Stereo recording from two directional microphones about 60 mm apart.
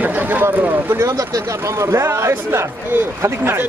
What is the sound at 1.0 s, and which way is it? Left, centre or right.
A man's voice, right.